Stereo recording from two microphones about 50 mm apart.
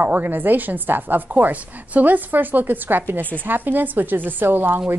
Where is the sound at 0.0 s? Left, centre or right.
Right.